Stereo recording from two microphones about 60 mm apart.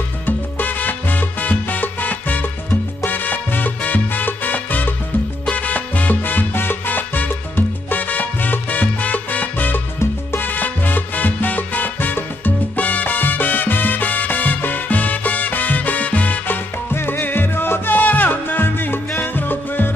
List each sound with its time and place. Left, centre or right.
0.6 s salsa music: left
16.9 s music: left